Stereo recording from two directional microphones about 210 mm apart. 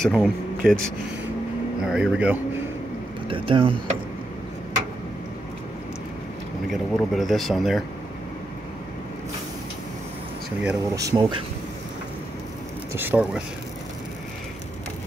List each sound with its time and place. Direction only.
0.0 s a man's voice: centre (ahead or behind)
1.8 s speech: 5° right (ahead or behind)
3.3 s speech: 25° right (ahead or behind)
6.7 s speech: centre (ahead or behind)
10.6 s speech: 10° right (ahead or behind)
12.9 s speech: 10° right (ahead or behind)